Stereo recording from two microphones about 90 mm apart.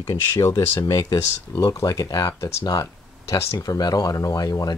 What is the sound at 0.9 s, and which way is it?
Speech, 60° left (ahead or behind).